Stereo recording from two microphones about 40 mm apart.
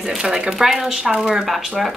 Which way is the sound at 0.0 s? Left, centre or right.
Centre.